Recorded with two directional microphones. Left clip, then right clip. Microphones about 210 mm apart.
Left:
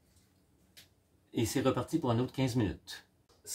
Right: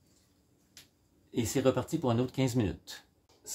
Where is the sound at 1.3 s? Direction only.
15° right (ahead or behind).